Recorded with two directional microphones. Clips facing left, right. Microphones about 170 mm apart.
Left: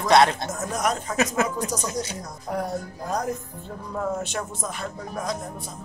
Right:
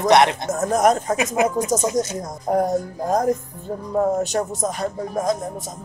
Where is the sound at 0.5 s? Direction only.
50° right (ahead or behind).